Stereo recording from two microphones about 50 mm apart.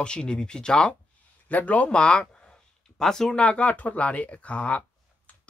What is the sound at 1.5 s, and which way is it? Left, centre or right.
Speech, left.